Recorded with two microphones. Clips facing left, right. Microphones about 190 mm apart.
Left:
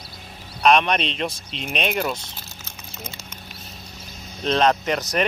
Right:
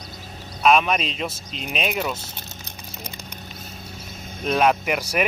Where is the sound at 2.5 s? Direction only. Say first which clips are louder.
Right 2 dB; 15° right (ahead or behind).